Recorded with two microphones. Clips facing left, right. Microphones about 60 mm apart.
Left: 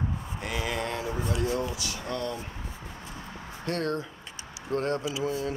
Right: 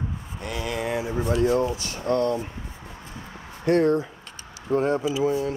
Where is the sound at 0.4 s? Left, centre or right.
Centre.